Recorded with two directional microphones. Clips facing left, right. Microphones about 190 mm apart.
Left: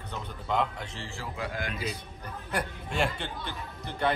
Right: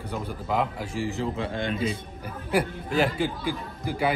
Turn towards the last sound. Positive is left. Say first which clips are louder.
# right 3 dB
turn(degrees=-10)  # may be behind; listen again after turning